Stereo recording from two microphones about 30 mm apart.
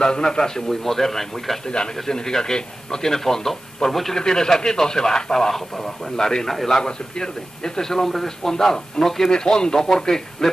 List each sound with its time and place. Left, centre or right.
0.0 s a man's voice: left; by 1.6 s centre
1.7 s a man's voice: left; by 4.2 s centre
4.2 s a man's voice: left
6.8 s a man's voice: left
9.3 s a man's voice: left